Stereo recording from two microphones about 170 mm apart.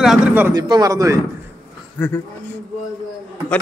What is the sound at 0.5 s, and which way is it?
Speech, 25° right (ahead or behind).